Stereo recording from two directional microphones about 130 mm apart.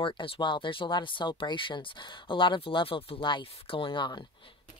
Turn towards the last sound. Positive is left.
turn(degrees=35)  # may be behind; listen again after turning